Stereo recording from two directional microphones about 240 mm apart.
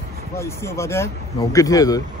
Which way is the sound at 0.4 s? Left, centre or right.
Centre.